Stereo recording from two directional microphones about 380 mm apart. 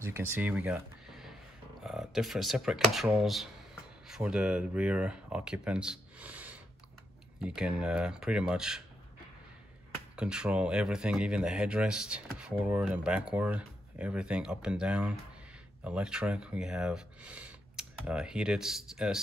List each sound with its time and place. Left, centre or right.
0.0 s speech: centre
10.1 s speech: centre